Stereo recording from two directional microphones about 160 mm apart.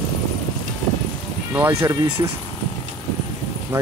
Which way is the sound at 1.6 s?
15° right (ahead or behind).